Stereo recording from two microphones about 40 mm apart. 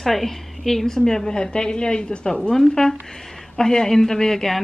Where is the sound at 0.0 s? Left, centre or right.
Centre; by 2.5 s left.